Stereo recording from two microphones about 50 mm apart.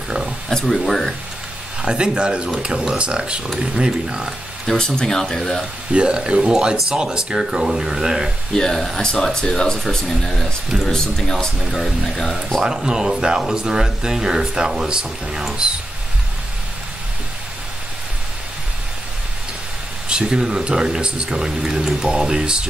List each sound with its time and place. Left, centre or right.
0.5 s speech: centre
1.8 s speech: centre
4.6 s speech: centre
5.9 s speech: centre
8.5 s speech: centre
12.6 s speech: centre
20.1 s speech: centre